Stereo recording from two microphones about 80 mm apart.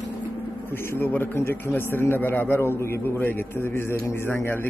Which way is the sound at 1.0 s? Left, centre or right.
Left.